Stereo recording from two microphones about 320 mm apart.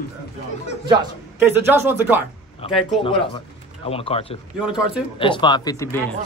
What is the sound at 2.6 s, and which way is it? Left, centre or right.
Speech, centre.